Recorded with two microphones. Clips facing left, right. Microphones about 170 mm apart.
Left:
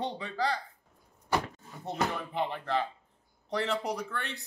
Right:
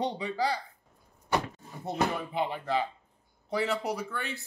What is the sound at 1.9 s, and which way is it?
Speech, 10° right (ahead or behind).